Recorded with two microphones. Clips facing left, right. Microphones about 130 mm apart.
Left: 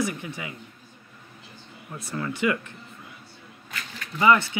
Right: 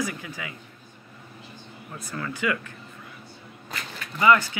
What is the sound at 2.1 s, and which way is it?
Speech, 20° left (ahead or behind).